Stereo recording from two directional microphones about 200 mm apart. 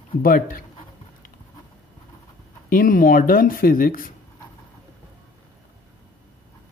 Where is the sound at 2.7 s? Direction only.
45° left (ahead or behind).